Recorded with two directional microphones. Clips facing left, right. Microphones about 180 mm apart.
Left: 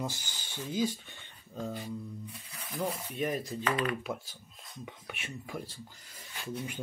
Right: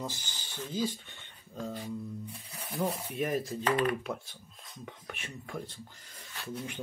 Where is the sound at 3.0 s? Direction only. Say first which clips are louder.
Right 1 dB; 5° right (ahead or behind).